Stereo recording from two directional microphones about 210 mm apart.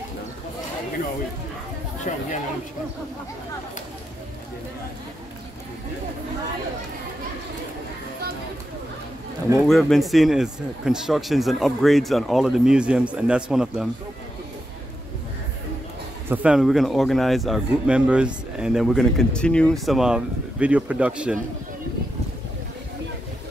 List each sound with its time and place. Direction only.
2.1 s speech: 35° left (ahead or behind)
9.7 s a man's voice: centre (ahead or behind)
16.3 s a man's voice: 5° right (ahead or behind)